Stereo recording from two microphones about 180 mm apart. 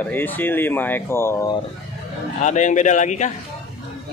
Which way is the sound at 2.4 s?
40° left (ahead or behind).